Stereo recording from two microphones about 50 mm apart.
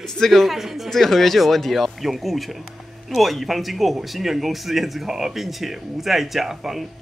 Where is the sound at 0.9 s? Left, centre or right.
Centre.